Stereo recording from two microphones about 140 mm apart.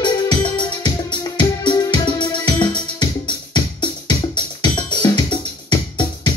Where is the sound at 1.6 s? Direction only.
35° left (ahead or behind).